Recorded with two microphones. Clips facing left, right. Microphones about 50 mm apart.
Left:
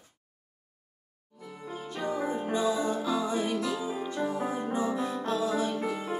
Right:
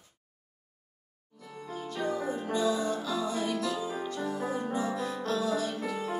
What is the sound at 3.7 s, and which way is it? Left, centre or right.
Music, centre.